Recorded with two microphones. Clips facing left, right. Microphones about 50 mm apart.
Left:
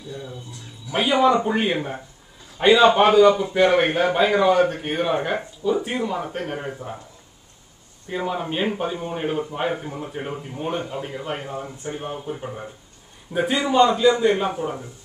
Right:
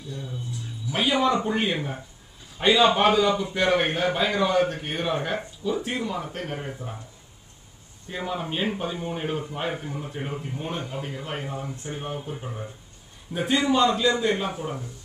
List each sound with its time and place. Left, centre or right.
0.9 s a man's voice: centre
2.7 s a man's voice: left
3.1 s a man's voice: centre
8.1 s a man's voice: centre